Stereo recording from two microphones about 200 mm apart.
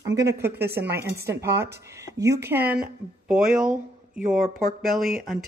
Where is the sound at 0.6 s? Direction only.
55° right (ahead or behind).